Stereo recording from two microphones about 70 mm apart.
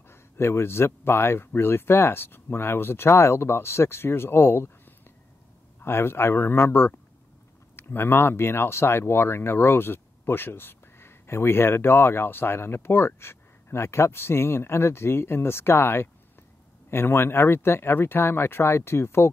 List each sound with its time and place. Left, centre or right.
0.1 s speech: left
5.8 s speech: left